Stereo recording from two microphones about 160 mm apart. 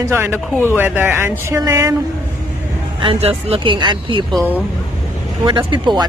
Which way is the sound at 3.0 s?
35° right (ahead or behind).